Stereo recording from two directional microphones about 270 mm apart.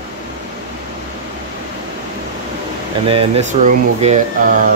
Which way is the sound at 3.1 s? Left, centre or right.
Right.